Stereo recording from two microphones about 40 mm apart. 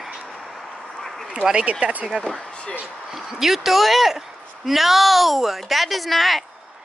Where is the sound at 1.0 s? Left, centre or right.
Centre.